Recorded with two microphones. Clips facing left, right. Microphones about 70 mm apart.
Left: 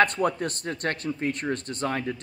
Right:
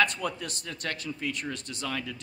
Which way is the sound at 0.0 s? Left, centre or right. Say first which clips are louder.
Left 6 dB; left.